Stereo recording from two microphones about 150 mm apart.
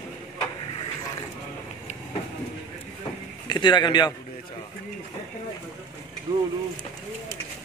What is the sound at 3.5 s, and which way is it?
Speech, 30° left (ahead or behind).